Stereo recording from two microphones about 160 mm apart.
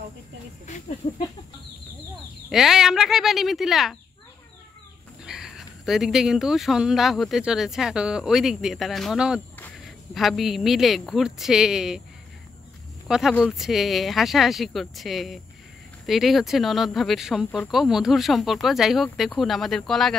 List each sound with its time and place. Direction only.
0.7 s a sound: 45° left (ahead or behind)
2.5 s speech: 5° right (ahead or behind)
5.2 s speech: 5° right (ahead or behind)
13.4 s speech: centre (ahead or behind)